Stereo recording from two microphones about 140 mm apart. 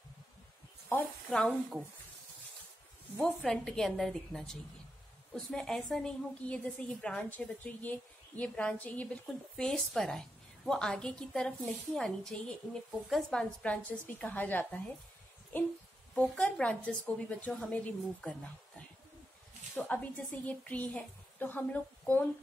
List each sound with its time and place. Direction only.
1.3 s a woman's voice: 5° left (ahead or behind)
3.2 s a woman's voice: 10° left (ahead or behind)
19.9 s a woman's voice: 10° left (ahead or behind)